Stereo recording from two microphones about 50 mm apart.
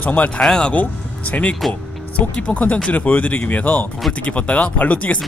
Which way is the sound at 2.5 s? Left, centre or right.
Left.